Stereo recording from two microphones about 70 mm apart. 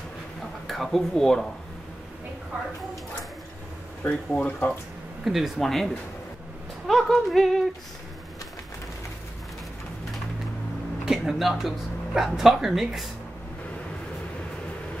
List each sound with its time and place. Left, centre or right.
0.7 s speech: centre
4.0 s speech: centre
5.2 s speech: centre
6.9 s speech: centre
11.1 s speech: centre